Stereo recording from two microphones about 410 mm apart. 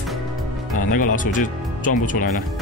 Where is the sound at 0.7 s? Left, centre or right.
Centre.